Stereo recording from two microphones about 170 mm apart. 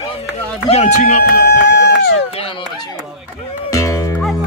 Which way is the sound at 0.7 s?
40° left (ahead or behind).